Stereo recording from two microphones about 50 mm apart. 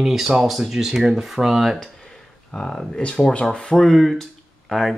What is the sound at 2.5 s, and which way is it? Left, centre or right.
Speech, centre.